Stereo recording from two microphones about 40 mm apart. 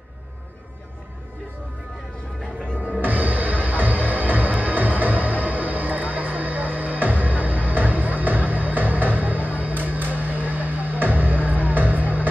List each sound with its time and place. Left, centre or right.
2.7 s music: right